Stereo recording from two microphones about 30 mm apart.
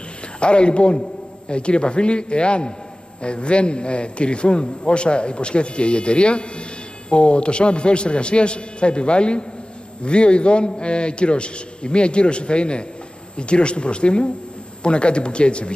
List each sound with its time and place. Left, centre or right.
0.4 s a man's voice: left